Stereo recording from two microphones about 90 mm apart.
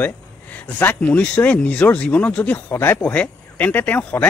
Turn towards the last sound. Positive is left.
turn(degrees=20)  # may be behind; listen again after turning